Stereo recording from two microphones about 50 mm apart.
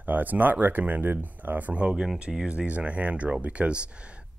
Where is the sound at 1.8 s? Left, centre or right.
Centre.